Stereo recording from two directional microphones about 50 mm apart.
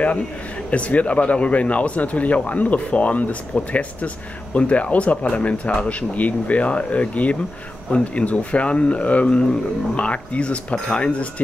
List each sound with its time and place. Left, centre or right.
0.7 s speech: left